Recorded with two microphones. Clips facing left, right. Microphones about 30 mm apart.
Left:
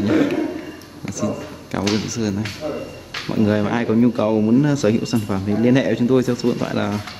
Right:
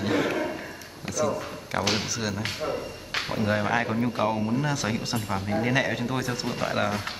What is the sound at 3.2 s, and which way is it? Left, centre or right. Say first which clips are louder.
Speech: left 8 dB; centre.